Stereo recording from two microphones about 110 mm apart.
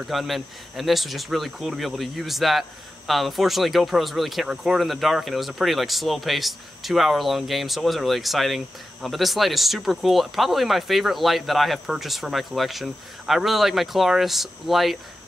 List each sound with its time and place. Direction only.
0.0 s speech: centre (ahead or behind)